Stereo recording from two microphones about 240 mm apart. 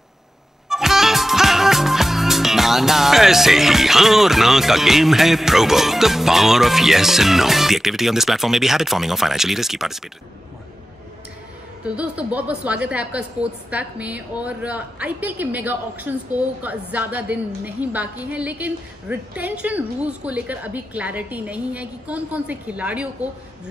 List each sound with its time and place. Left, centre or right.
0.7 s music: centre
11.8 s a woman's voice: centre